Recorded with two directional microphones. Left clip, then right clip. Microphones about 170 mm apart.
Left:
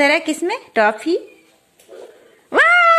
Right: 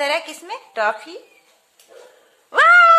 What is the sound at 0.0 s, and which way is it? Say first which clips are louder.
A woman's voice: left 6 dB; 20° left (ahead or behind).